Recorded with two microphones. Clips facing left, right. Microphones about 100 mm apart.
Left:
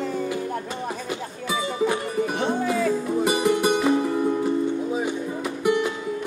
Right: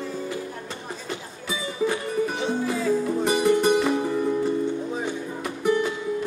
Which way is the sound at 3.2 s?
10° left (ahead or behind).